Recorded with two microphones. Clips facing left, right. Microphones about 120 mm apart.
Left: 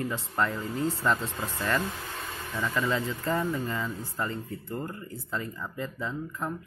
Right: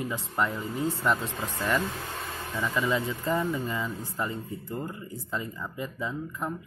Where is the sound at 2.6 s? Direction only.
15° right (ahead or behind).